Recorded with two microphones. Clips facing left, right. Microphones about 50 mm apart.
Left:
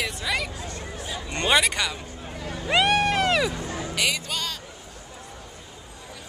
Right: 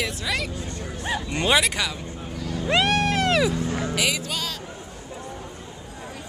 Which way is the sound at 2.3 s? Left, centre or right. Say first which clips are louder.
Right 3 dB; left.